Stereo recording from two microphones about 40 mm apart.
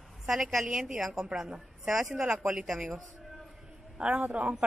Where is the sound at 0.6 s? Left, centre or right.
Centre.